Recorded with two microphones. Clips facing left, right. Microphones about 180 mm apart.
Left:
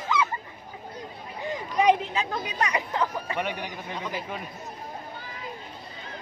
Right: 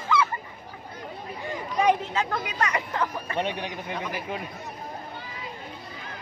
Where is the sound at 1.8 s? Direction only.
15° left (ahead or behind).